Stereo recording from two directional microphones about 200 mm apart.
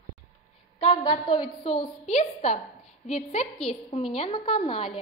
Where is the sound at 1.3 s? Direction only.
25° left (ahead or behind).